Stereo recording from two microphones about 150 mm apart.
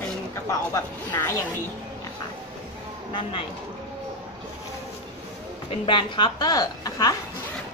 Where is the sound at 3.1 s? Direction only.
35° left (ahead or behind).